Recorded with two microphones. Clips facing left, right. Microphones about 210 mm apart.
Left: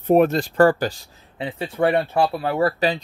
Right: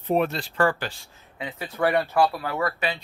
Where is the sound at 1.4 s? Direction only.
30° left (ahead or behind).